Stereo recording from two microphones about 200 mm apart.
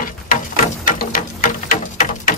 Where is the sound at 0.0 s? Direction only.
45° left (ahead or behind).